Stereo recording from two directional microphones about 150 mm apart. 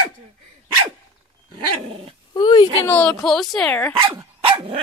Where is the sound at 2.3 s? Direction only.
30° left (ahead or behind).